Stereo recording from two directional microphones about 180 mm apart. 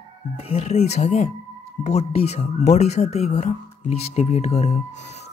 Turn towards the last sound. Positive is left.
turn(degrees=40)  # may be behind; listen again after turning